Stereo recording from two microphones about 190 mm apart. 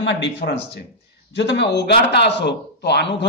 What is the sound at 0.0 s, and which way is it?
Speech, 70° left (ahead or behind).